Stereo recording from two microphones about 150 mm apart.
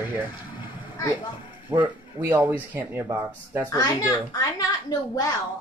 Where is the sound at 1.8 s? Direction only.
15° right (ahead or behind).